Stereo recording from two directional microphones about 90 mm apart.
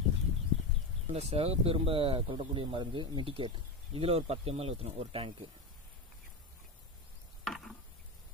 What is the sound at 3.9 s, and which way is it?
Speech, 90° right.